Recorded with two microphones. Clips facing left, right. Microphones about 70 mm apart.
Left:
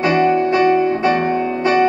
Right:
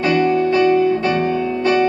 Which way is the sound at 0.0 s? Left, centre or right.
Left.